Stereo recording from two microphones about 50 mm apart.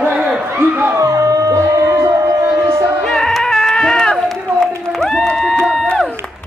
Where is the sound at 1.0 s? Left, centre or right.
Right.